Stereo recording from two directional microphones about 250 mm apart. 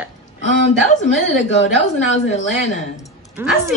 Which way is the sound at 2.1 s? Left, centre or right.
Left.